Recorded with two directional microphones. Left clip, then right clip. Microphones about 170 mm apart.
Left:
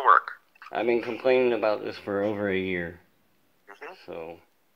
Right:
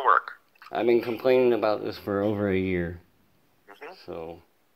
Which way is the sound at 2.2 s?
25° right (ahead or behind).